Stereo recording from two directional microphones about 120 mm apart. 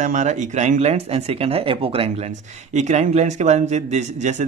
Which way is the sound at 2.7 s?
75° right (ahead or behind).